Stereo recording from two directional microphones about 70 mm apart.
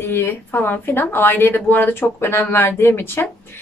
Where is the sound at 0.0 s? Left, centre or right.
Left.